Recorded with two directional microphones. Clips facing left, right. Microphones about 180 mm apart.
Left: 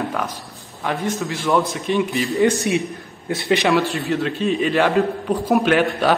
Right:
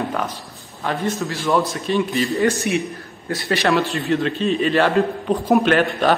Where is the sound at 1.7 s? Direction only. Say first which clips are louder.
Even; 15° left (ahead or behind).